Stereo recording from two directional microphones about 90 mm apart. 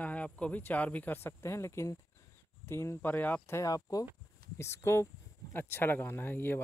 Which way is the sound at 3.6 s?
35° left (ahead or behind).